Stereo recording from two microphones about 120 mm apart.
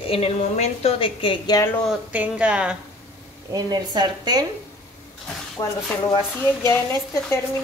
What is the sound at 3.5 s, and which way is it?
Speech, 35° right (ahead or behind).